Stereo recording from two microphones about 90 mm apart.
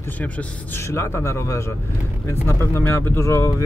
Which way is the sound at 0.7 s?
30° left (ahead or behind).